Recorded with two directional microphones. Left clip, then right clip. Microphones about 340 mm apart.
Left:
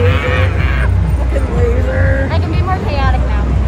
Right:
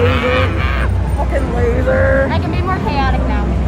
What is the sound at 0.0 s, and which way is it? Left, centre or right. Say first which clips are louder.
Goose: right 2 dB; centre.